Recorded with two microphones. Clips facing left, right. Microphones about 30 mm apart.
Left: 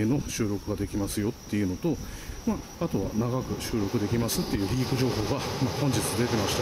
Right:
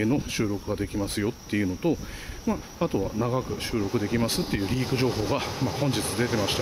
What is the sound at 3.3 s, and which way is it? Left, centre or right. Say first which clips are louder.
Speech: right 2 dB; centre.